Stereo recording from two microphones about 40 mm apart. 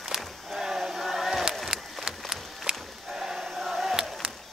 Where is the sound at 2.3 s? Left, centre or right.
Centre.